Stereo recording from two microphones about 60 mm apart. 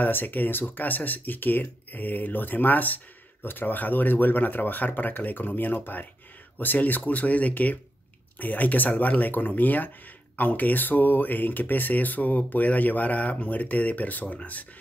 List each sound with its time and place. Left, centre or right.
0.0 s speech: left